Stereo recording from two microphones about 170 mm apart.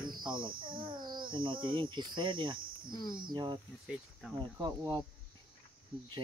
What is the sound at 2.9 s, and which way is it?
Speech, 20° left (ahead or behind).